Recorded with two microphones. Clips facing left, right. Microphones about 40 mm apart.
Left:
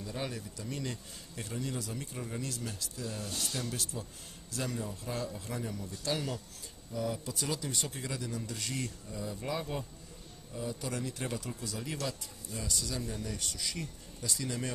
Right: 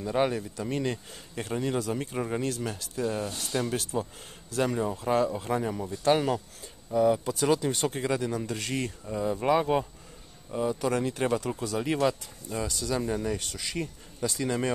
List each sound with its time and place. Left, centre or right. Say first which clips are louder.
0.0 s speech: right 12 dB; right
3.3 s speech: right 2 dB; centre
3.5 s speech: right 9 dB; right